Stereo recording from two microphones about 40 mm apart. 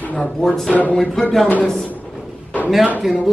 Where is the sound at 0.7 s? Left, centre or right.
Left.